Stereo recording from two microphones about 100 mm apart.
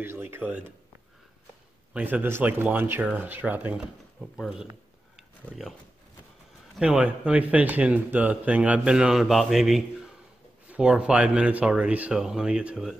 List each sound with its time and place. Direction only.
0.0 s speech: 20° right (ahead or behind)
2.0 s speech: 10° right (ahead or behind)
2.2 s speech: 20° right (ahead or behind)
4.2 s speech: 5° right (ahead or behind)
6.8 s speech: 10° right (ahead or behind)